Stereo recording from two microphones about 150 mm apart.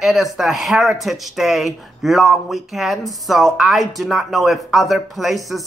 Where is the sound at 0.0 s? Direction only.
Centre (ahead or behind).